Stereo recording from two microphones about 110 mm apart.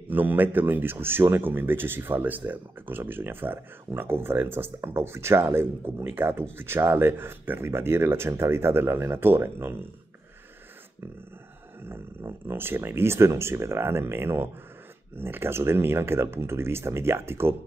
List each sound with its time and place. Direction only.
0.1 s speech: 15° right (ahead or behind)
12.2 s speech: 25° right (ahead or behind)